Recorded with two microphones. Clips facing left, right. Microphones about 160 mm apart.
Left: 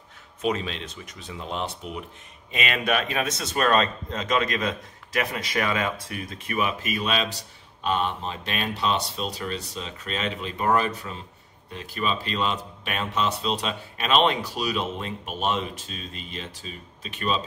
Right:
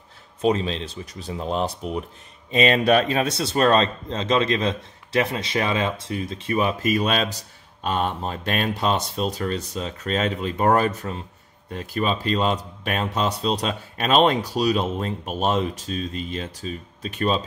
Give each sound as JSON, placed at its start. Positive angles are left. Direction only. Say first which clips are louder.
{"t": 0.4, "sound": "a man's voice", "louder": "right 5 dB", "side_deg": -30}